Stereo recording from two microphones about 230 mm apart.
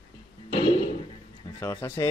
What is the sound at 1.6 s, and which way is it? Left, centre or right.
Speech, centre.